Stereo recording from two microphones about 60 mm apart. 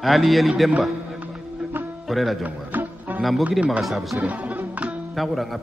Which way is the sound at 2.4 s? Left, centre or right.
Right.